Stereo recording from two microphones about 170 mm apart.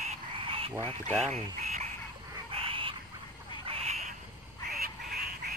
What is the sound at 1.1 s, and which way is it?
Speech, 5° left (ahead or behind).